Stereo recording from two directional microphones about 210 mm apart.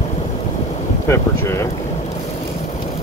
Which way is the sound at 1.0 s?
15° left (ahead or behind).